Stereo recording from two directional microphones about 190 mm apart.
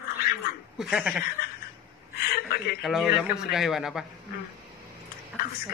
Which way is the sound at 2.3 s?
55° left (ahead or behind).